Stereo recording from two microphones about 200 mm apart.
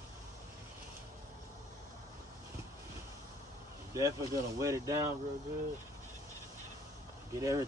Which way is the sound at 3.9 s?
15° right (ahead or behind).